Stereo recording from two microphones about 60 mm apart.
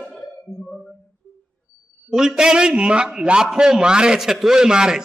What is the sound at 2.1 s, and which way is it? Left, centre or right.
A man's voice, centre.